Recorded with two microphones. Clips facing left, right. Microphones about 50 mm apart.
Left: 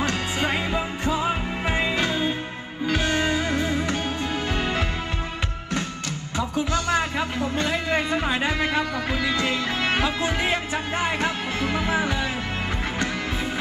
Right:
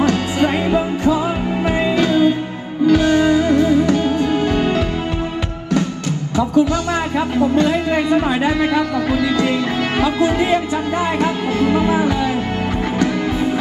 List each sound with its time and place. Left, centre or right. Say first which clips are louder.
0.5 s music: right 8 dB; right
2.9 s music: right 10 dB; left
6.7 s music: right 5 dB; right